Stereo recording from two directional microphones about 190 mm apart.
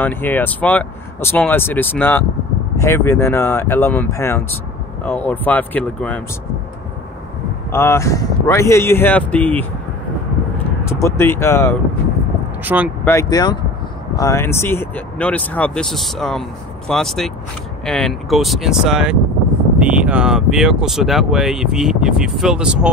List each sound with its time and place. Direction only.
0.0 s speech: 10° left (ahead or behind)
7.7 s speech: 15° left (ahead or behind)
10.9 s speech: 15° left (ahead or behind)
12.6 s speech: 10° right (ahead or behind)
13.0 s speech: 15° left (ahead or behind); by 22.8 s 5° right (ahead or behind)